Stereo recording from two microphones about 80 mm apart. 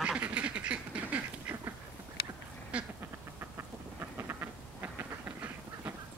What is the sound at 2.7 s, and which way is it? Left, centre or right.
Duck, centre.